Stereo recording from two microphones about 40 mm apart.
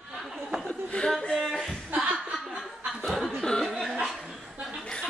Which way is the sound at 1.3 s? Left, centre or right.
Centre.